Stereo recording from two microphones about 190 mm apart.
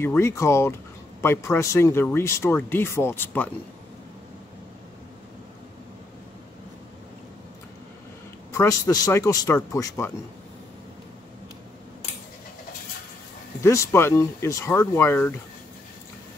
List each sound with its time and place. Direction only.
0.0 s speech: 15° left (ahead or behind)
8.5 s speech: 15° left (ahead or behind)
13.6 s speech: 15° left (ahead or behind)